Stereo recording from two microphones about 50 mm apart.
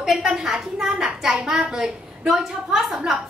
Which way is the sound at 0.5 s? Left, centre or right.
Centre.